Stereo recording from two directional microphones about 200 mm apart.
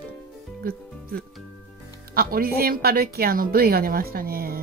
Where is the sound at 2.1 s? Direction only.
50° right (ahead or behind).